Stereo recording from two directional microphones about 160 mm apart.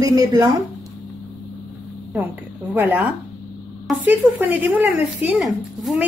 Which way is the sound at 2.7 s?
10° right (ahead or behind).